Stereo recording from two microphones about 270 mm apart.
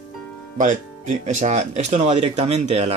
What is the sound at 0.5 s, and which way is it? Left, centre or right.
Speech, right.